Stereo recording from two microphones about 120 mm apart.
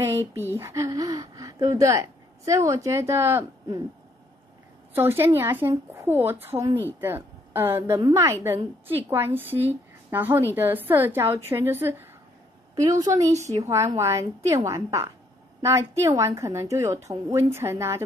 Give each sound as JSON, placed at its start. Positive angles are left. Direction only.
{"t": 0.0, "sound": "speech", "side_deg": -25}
{"t": 4.9, "sound": "a woman's voice", "side_deg": -20}